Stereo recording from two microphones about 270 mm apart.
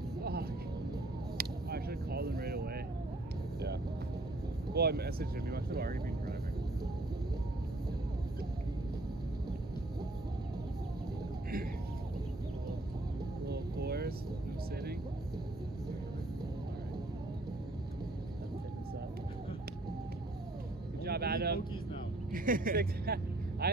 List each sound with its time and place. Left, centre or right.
0.2 s vehicle: right
1.4 s a sound: right
4.7 s speech: right
13.5 s vehicle: right
21.0 s a sound: right
22.3 s speech: right